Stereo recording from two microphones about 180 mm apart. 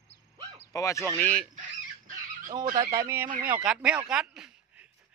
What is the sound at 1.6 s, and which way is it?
Dog, 50° right (ahead or behind).